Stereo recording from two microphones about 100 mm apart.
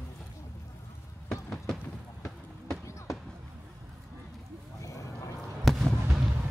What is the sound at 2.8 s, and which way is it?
Basketball bounce, 30° left (ahead or behind).